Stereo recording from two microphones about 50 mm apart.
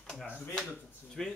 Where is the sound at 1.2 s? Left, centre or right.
Centre.